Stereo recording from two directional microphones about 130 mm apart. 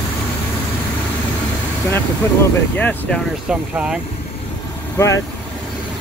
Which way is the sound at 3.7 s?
5° right (ahead or behind).